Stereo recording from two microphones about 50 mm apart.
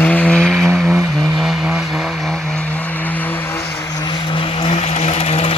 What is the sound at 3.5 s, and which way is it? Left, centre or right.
Vehicle, left.